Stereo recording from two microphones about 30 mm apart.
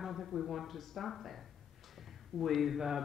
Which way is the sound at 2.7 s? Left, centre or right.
Centre.